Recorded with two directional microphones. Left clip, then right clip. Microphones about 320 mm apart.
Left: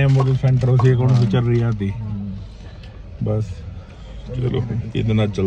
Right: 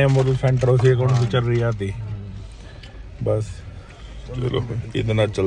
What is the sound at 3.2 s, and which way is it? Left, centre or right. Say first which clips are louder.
Speech: right 3 dB; centre.